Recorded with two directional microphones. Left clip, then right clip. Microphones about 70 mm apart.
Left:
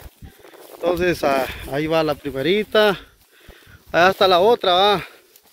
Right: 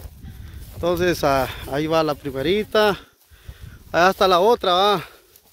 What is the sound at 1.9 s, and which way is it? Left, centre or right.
Speech, right.